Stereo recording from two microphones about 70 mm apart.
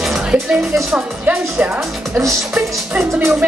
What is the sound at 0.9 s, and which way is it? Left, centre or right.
Speech, centre.